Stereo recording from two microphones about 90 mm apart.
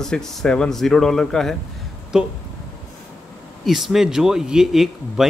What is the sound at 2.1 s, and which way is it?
Speech, 10° right (ahead or behind).